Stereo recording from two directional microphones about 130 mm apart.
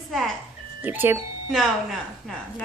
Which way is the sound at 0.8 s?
15° right (ahead or behind).